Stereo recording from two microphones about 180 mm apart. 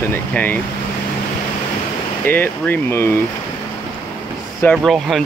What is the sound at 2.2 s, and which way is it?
Speech, 10° left (ahead or behind).